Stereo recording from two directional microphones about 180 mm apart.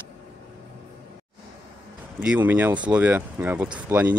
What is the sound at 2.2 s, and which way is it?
Speech, 10° right (ahead or behind).